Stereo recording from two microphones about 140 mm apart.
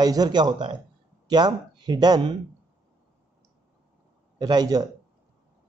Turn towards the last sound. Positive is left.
turn(degrees=-25)  # may be behind; listen again after turning